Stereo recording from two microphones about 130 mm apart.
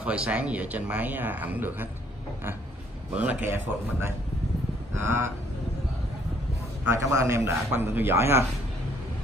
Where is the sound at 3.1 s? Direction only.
10° right (ahead or behind).